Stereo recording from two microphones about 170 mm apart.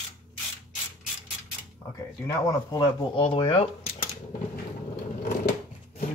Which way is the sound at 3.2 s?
30° left (ahead or behind).